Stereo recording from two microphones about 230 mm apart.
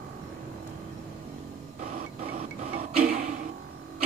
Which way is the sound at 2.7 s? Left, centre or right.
Right.